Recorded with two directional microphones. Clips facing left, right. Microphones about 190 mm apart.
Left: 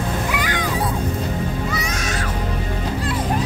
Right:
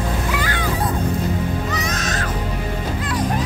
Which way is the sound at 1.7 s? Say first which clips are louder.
Right 1 dB; 10° left (ahead or behind).